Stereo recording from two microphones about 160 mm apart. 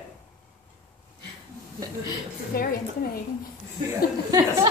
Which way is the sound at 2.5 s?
65° left (ahead or behind).